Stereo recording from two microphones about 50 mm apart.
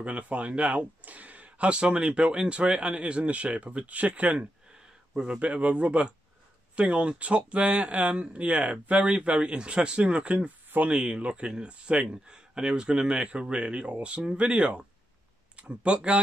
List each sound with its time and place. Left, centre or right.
0.0 s speech: right
11.1 s speech: right